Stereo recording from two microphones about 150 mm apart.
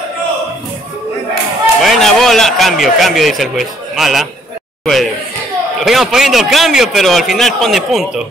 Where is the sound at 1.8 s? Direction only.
Centre (ahead or behind).